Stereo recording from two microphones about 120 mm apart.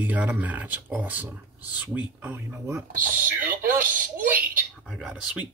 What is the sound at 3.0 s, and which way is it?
Speech, 90° right.